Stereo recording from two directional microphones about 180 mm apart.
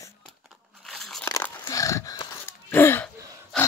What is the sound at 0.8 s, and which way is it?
Crumpling, centre (ahead or behind).